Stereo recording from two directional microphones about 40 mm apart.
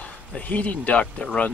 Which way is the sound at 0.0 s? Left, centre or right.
Left.